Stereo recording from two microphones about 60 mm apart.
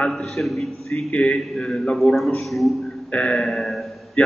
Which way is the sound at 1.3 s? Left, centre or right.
Centre.